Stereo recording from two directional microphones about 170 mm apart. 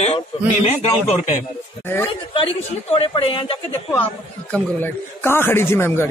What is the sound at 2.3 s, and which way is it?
A man's voice, 35° left (ahead or behind).